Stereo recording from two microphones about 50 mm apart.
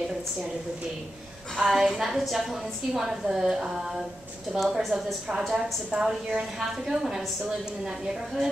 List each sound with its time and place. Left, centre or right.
1.6 s a woman's voice: centre